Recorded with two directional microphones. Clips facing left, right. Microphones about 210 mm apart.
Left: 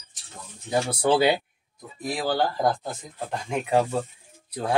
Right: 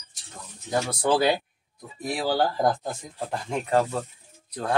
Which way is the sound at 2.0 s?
10° right (ahead or behind).